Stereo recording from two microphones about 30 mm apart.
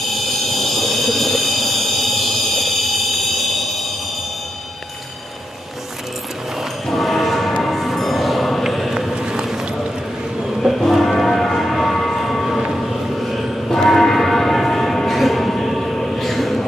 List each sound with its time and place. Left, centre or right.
0.0 s a sound: centre
6.9 s music: centre
8.6 s a sound: centre
9.1 s run: right
10.4 s music: centre
11.1 s civil defense siren: centre
12.0 s train: centre
12.7 s vehicle: centre
13.7 s bell: centre
14.1 s a sound: centre